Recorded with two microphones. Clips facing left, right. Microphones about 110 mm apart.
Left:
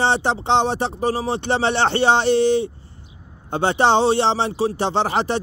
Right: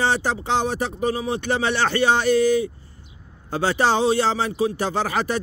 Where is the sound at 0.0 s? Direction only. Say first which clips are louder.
Left 3 dB; 25° left (ahead or behind).